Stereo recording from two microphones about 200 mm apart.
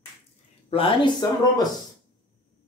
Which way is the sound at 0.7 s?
25° left (ahead or behind).